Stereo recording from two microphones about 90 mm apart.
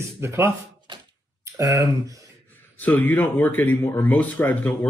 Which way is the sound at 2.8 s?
20° left (ahead or behind).